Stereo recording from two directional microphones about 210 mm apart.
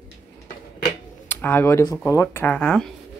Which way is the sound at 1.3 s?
10° left (ahead or behind).